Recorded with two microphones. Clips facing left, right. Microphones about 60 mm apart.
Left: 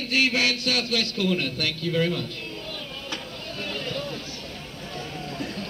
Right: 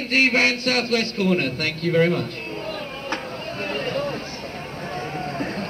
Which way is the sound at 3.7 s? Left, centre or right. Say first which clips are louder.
Right 7 dB; right.